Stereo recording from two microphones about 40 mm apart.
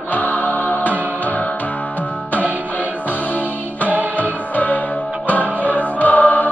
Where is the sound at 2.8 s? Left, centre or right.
Left.